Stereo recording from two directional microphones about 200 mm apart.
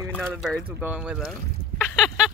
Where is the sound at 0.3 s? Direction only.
5° right (ahead or behind).